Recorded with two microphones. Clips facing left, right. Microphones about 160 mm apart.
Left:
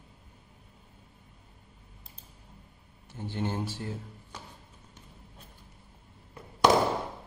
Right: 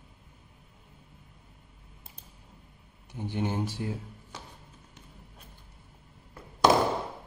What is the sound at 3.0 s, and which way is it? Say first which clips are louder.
Speech: right 2 dB; 15° right (ahead or behind).